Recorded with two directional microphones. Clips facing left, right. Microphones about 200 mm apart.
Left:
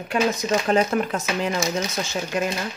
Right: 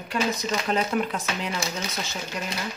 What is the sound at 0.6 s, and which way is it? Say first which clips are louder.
Speech: left 3 dB; 45° left (ahead or behind).